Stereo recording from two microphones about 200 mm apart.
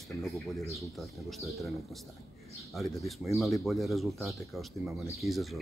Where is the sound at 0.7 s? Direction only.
Centre (ahead or behind).